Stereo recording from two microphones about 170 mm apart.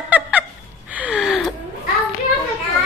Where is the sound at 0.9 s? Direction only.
10° right (ahead or behind).